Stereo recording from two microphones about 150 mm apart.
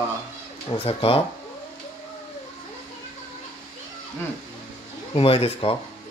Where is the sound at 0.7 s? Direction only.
40° left (ahead or behind).